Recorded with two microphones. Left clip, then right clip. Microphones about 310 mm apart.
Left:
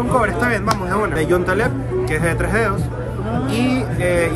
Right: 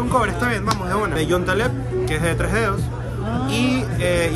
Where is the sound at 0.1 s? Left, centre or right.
Centre.